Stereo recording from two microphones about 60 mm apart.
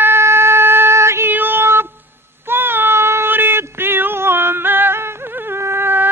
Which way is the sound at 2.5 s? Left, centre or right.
Right.